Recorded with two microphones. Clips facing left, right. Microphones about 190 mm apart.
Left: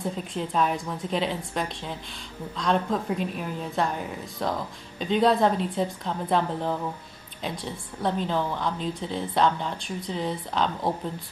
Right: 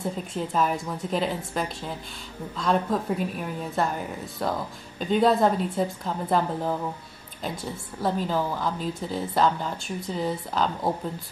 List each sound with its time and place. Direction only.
0.0 s a woman's voice: 5° right (ahead or behind)